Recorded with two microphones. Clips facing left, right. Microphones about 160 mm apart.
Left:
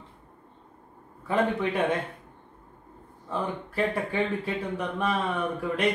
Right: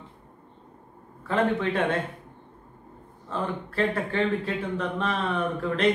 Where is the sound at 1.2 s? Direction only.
10° left (ahead or behind).